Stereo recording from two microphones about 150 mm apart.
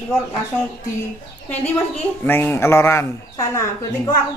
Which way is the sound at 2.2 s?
15° left (ahead or behind).